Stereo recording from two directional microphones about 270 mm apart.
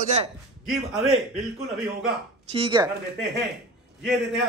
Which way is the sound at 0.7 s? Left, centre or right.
Centre.